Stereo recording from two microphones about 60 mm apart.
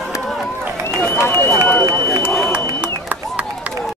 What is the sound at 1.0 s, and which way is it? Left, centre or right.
Run, left.